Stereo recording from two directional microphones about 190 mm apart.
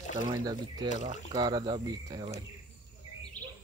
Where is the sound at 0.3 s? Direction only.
20° right (ahead or behind).